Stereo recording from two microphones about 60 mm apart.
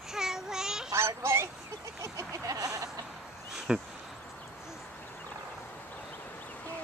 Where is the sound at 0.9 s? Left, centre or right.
Right.